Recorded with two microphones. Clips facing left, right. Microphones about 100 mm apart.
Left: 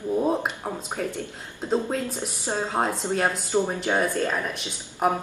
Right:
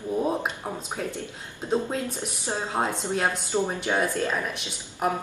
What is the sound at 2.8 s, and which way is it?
Speech, 5° left (ahead or behind).